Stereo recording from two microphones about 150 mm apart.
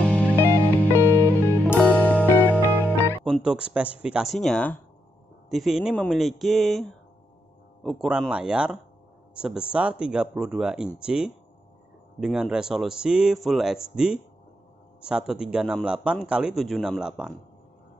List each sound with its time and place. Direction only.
0.0 s music: 10° left (ahead or behind)
3.3 s speech: 5° right (ahead or behind)